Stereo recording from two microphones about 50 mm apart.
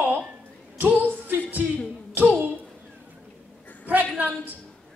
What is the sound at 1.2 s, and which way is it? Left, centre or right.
Music, right.